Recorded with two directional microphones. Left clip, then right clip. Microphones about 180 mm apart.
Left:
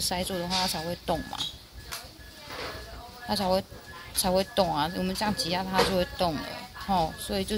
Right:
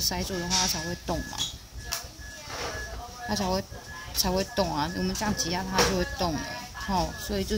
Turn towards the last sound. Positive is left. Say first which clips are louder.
# left 1 dB
turn(degrees=40)  # may be behind; listen again after turning